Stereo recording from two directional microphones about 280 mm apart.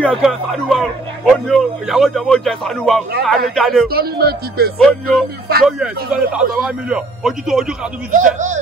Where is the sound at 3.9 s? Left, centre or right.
Right.